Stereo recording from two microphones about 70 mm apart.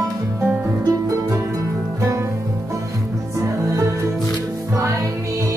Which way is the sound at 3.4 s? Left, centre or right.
Right.